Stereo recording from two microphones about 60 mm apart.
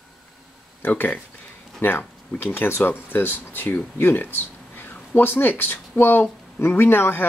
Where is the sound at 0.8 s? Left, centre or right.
Left.